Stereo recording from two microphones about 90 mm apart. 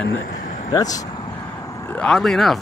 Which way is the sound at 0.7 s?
45° left (ahead or behind).